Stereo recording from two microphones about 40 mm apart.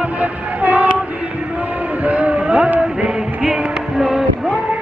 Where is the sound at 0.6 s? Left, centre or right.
Right.